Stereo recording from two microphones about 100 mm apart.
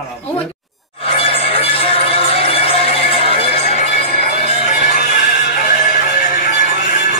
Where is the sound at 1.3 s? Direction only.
75° left (ahead or behind).